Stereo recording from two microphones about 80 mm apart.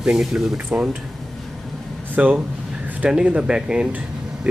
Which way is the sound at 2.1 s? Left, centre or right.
Right.